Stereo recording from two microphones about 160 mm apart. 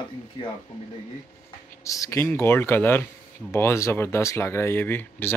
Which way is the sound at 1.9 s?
20° left (ahead or behind).